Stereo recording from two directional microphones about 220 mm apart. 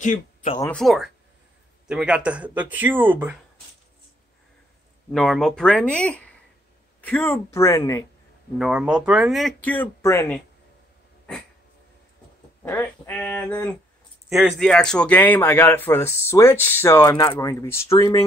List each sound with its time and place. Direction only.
0.0 s speech: 35° left (ahead or behind)
0.6 s speech: 5° left (ahead or behind)
5.1 s speech: centre (ahead or behind)
8.5 s speech: 5° right (ahead or behind)
12.6 s speech: 10° left (ahead or behind)